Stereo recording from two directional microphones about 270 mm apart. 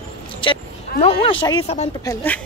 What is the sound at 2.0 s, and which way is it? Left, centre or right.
Speech, centre.